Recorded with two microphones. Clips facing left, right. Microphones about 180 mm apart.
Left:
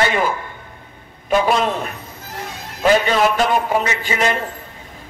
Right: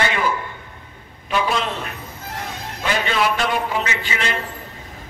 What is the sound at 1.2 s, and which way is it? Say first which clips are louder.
Speech: left 5 dB; 45° left (ahead or behind).